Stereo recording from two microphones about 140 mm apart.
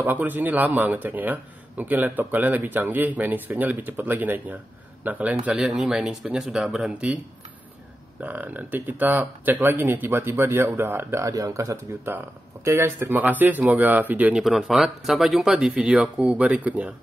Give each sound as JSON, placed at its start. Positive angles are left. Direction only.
{"t": 0.0, "sound": "speech", "side_deg": -15}
{"t": 8.2, "sound": "speech", "side_deg": -10}